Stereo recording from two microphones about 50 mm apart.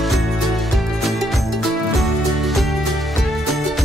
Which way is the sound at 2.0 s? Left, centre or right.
Centre.